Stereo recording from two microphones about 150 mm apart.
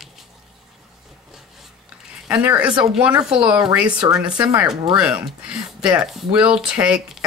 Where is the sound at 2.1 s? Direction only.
5° right (ahead or behind).